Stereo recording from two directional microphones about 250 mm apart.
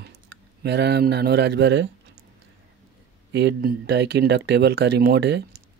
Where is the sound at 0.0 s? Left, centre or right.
Right.